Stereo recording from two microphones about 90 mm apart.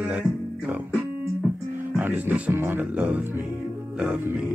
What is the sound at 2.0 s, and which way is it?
Speech, 20° right (ahead or behind).